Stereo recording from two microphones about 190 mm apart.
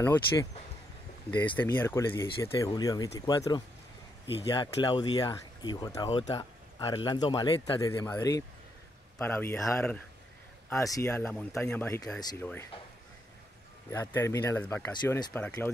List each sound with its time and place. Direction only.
0.0 s speech: 15° left (ahead or behind)
1.7 s speech: 15° left (ahead or behind)
12.2 s speech: 20° left (ahead or behind)
13.8 s speech: 15° left (ahead or behind)